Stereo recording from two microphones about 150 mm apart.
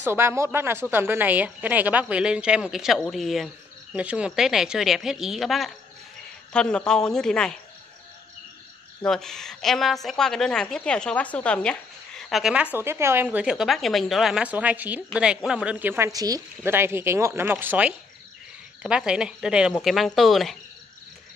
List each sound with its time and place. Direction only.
0.0 s a woman's voice: 15° right (ahead or behind); by 7.5 s 5° left (ahead or behind)
9.0 s a woman's voice: 5° left (ahead or behind)
12.7 s a woman's voice: 15° right (ahead or behind); by 20.5 s centre (ahead or behind)